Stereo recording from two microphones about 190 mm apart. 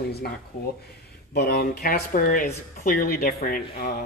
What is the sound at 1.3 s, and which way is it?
A man's voice, 55° left (ahead or behind).